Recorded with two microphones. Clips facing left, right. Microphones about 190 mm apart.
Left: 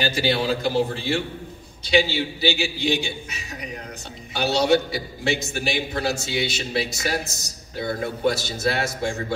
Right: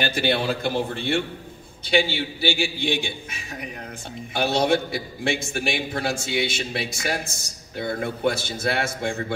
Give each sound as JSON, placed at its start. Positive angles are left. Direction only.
{"t": 0.0, "sound": "a man's voice", "side_deg": -55}